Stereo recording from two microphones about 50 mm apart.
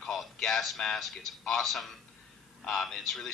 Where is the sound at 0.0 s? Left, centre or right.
Centre.